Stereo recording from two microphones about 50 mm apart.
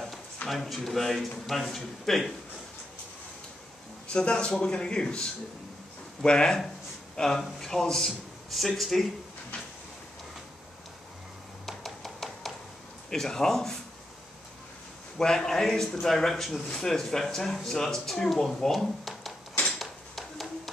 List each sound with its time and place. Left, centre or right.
0.5 s speech: centre
4.1 s speech: centre
11.6 s tap: centre
13.1 s speech: centre
15.1 s speech: centre
19.8 s a sound: centre